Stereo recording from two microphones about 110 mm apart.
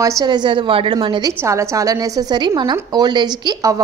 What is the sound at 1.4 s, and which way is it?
A woman's voice, 25° right (ahead or behind).